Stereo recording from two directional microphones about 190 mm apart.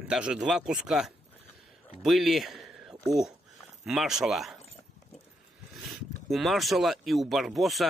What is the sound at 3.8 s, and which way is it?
Speech, centre (ahead or behind).